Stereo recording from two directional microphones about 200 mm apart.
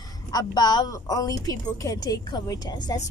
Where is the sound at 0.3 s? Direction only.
20° left (ahead or behind).